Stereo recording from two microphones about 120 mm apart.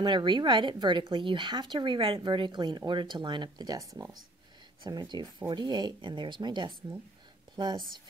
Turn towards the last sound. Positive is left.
turn(degrees=-40)  # may be behind; listen again after turning